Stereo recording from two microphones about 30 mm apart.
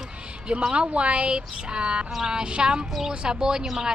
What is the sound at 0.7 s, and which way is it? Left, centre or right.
Speech, right.